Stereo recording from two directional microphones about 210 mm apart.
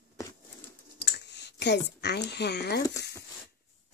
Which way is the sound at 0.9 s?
55° left (ahead or behind).